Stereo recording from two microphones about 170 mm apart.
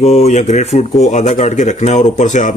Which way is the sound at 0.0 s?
40° left (ahead or behind).